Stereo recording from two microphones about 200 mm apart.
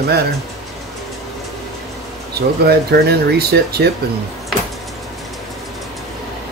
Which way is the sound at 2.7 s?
50° right (ahead or behind).